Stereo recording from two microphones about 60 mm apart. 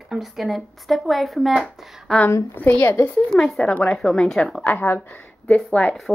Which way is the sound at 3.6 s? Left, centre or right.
Centre.